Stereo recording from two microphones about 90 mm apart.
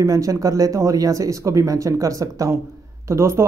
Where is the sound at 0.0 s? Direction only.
35° right (ahead or behind).